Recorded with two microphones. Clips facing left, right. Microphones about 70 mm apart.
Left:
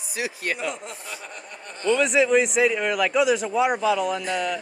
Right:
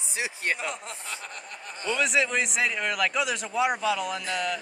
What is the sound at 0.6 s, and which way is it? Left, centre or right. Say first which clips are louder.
Speech: left 4 dB; centre.